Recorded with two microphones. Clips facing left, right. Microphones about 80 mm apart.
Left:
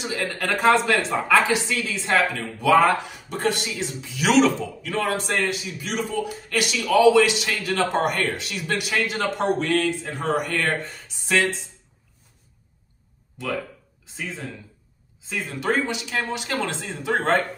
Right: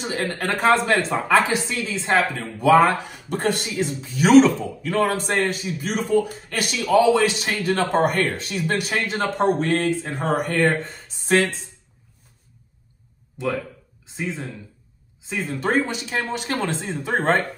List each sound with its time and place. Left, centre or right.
0.0 s speech: right
4.9 s speech: right
8.0 s speech: right
10.6 s speech: right
11.1 s speech: right
14.0 s speech: right